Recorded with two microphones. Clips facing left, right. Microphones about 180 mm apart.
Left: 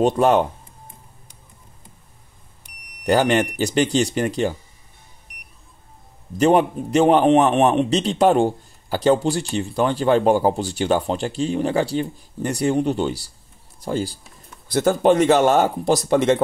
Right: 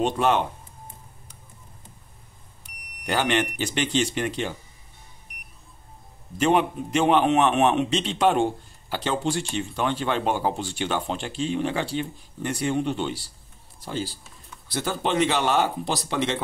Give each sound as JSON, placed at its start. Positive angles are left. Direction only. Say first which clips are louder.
{"t": 0.0, "sound": "a man's voice", "louder": "left 6 dB", "side_deg": 40}
{"t": 3.1, "sound": "a man's voice", "louder": "left 7 dB", "side_deg": 40}
{"t": 6.3, "sound": "a man's voice", "louder": "left 5 dB", "side_deg": 40}